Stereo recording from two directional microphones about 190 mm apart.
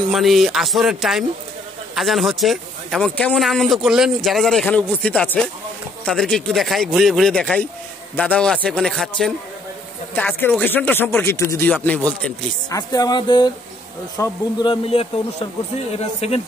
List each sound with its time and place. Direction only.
0.1 s speech: centre (ahead or behind)
12.6 s speech: 20° left (ahead or behind)